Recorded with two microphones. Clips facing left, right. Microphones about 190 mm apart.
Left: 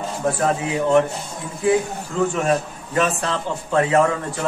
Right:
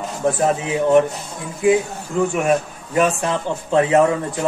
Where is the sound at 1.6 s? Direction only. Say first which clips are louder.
Right 2 dB; 15° right (ahead or behind).